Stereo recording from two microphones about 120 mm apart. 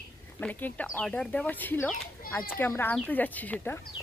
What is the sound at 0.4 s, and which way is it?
Speech, 15° left (ahead or behind).